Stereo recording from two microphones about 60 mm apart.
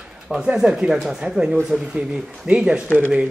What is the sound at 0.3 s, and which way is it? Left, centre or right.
A man's voice, centre.